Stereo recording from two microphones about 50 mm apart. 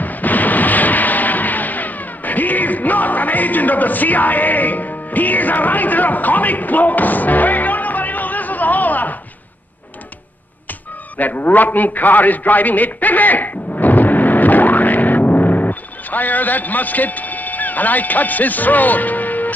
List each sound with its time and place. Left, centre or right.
0.0 s vehicle: left
10.7 s music: left